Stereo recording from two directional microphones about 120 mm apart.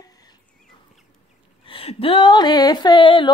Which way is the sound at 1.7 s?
50° left (ahead or behind).